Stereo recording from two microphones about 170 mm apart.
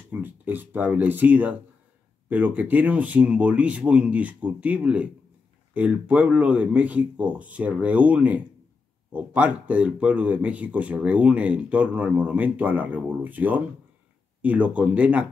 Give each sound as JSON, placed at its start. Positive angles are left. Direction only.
{"t": 0.1, "sound": "speech", "side_deg": -10}